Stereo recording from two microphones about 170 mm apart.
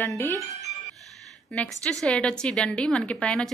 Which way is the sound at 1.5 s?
5° left (ahead or behind).